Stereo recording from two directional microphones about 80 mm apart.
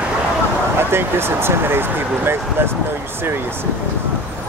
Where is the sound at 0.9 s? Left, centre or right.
Right.